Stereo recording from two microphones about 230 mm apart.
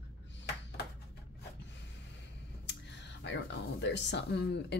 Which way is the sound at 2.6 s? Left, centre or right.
Left.